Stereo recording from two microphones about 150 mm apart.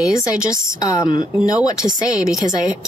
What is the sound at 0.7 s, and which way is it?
Speech, 25° left (ahead or behind).